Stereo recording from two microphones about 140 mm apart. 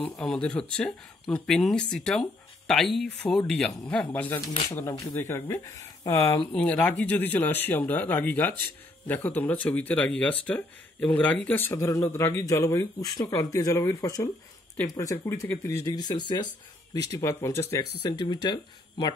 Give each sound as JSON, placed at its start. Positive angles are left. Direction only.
{"t": 0.1, "sound": "speech", "side_deg": 5}
{"t": 6.5, "sound": "speech", "side_deg": 10}
{"t": 15.8, "sound": "speech", "side_deg": 30}
{"t": 18.0, "sound": "speech", "side_deg": 30}